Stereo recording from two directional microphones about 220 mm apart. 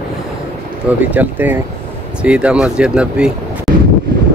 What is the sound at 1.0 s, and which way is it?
Speech, 10° right (ahead or behind).